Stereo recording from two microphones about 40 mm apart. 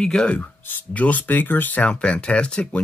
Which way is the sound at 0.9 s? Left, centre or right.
Left.